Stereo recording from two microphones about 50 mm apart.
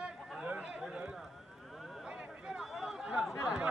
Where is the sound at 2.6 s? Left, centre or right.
Centre.